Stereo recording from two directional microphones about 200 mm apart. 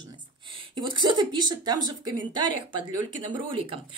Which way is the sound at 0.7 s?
25° right (ahead or behind).